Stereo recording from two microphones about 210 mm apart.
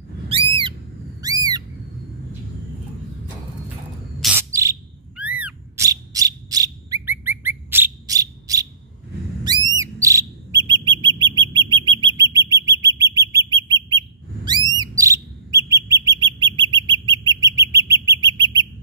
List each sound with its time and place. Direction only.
0.3 s owl: 25° right (ahead or behind)
1.2 s a sound: 20° right (ahead or behind)
4.4 s bird: 15° right (ahead or behind)